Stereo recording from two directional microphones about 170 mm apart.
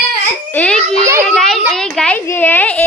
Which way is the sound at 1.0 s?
15° right (ahead or behind).